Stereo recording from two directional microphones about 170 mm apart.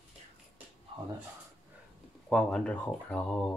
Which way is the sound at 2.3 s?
5° left (ahead or behind).